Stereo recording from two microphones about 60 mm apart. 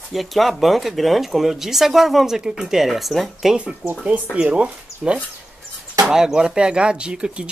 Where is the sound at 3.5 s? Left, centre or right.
Centre.